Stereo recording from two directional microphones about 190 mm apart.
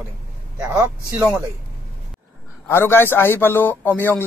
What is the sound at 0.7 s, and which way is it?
Speech, 10° right (ahead or behind).